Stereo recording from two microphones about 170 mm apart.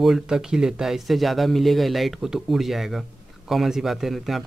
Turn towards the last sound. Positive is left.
turn(degrees=0)  # may be behind; listen again after turning